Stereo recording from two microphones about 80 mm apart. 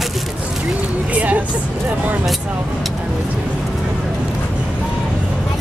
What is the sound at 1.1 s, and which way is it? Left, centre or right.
Vehicle, centre.